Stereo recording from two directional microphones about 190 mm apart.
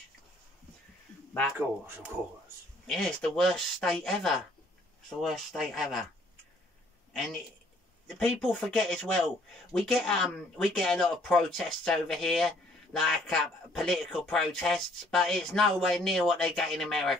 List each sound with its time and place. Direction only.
2.9 s speech: centre (ahead or behind)
8.2 s speech: 5° left (ahead or behind)